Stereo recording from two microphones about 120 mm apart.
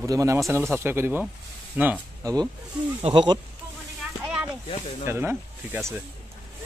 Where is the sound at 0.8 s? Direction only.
20° right (ahead or behind).